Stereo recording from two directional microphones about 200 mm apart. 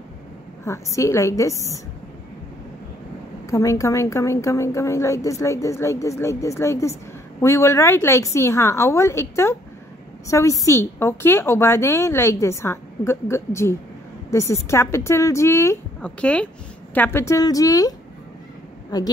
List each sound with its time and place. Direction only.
0.7 s a woman's voice: 15° left (ahead or behind)
3.4 s a woman's voice: 15° left (ahead or behind)